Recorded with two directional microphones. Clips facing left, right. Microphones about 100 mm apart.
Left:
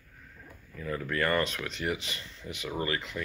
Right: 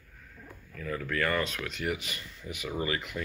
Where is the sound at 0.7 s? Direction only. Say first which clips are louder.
Left 1 dB; 10° left (ahead or behind).